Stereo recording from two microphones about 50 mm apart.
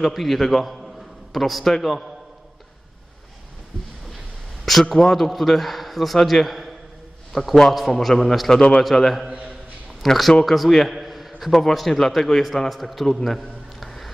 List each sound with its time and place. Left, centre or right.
0.0 s a man's voice: centre
4.6 s a man's voice: centre
8.5 s a man's voice: centre
8.8 s a man's voice: centre